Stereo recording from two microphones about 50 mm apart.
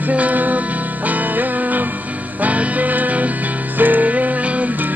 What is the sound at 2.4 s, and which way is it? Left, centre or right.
Music, right.